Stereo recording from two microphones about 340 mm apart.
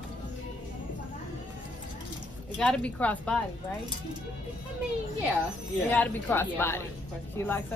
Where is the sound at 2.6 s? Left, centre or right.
Centre.